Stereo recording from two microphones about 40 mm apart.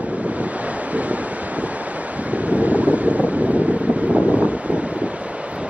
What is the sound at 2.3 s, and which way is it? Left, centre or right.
Wind, right.